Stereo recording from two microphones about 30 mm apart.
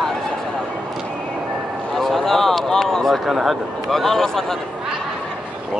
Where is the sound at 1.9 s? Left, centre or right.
Centre.